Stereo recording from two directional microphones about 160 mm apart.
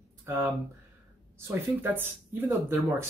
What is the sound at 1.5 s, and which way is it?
Speech, 15° right (ahead or behind).